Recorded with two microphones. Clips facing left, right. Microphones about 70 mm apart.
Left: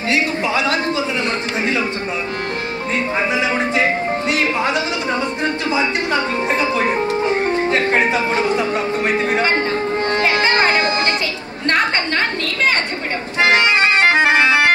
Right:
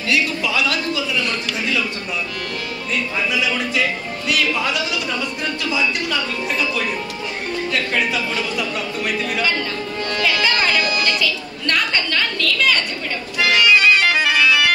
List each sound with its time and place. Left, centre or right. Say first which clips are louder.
0.1 s a man's voice: left 2 dB; left
3.2 s a man's voice: left 3 dB; left
10.1 s a sound: left 2 dB; left
13.4 s organ: left 1 dB; left